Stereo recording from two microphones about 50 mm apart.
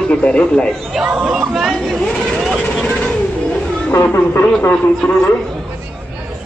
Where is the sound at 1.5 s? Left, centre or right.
Centre.